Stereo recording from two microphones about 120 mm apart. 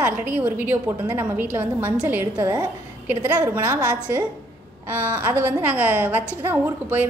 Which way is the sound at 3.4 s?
20° right (ahead or behind).